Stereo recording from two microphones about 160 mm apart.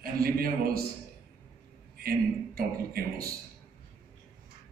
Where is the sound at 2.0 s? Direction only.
70° right (ahead or behind).